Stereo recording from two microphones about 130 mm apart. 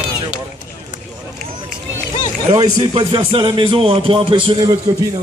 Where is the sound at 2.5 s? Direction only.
35° right (ahead or behind).